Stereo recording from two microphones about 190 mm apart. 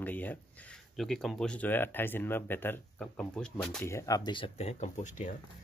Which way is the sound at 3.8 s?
15° left (ahead or behind).